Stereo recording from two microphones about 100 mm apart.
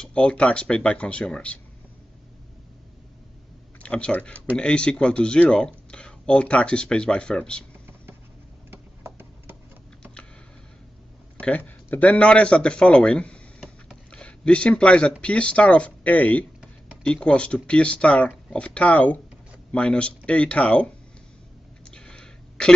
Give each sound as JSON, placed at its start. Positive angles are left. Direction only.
{"t": 0.0, "sound": "speech", "side_deg": 10}
{"t": 3.8, "sound": "speech", "side_deg": 10}
{"t": 8.6, "sound": "tick-tock", "side_deg": -25}
{"t": 11.3, "sound": "speech", "side_deg": 15}
{"t": 21.9, "sound": "a sound", "side_deg": 5}